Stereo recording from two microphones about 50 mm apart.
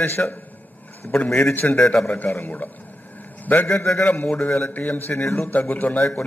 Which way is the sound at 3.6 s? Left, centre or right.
Centre.